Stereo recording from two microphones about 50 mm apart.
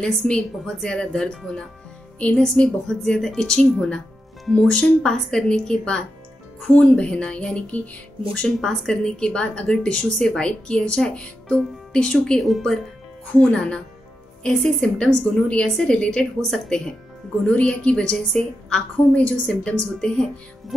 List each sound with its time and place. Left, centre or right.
0.0 s a woman's voice: centre
2.1 s a woman's voice: left
2.4 s a woman's voice: centre
4.6 s speech: left
5.0 s a woman's voice: centre; by 8.5 s left
8.5 s a woman's voice: centre
12.4 s speech: centre
13.4 s speech: left
14.8 s a woman's voice: centre
17.4 s speech: left